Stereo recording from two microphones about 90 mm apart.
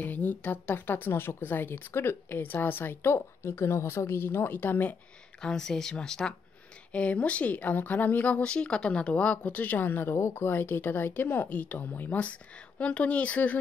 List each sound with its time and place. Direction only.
0.0 s speech: 20° left (ahead or behind)
5.4 s speech: 5° left (ahead or behind)